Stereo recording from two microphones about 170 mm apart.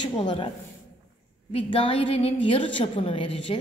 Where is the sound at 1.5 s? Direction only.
30° left (ahead or behind).